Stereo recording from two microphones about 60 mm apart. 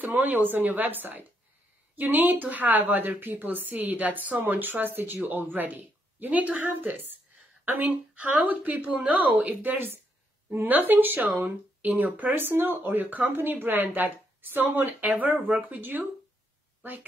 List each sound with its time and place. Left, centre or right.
0.0 s a woman's voice: right
15.3 s speech: centre
15.7 s speech: right